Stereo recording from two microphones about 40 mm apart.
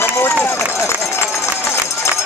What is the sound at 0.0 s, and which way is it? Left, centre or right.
Run, left.